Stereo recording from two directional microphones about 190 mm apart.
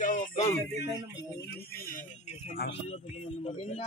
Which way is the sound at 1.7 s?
50° left (ahead or behind).